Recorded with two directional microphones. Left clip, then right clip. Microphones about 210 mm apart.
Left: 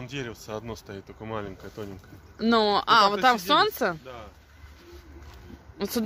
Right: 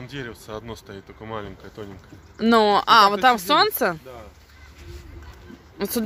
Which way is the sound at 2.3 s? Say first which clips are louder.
Right 5 dB; 5° right (ahead or behind).